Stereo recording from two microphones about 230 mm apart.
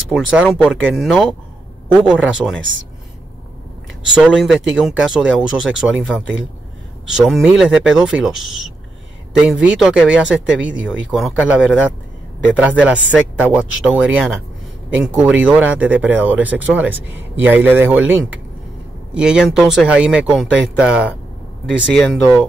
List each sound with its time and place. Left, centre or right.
0.1 s speech: centre
2.6 s speech: right
4.1 s speech: centre
19.1 s speech: centre